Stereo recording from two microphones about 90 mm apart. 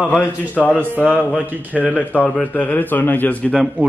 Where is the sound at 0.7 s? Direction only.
15° right (ahead or behind).